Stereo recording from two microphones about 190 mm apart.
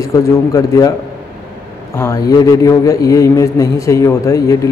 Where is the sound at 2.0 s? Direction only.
15° left (ahead or behind).